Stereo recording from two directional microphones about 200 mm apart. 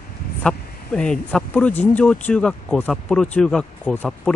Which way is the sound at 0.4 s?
5° left (ahead or behind).